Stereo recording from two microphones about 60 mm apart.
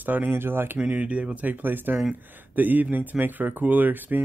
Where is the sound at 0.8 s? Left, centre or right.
Right.